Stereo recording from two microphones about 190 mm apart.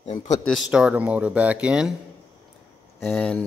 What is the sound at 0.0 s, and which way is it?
Speech, 35° left (ahead or behind).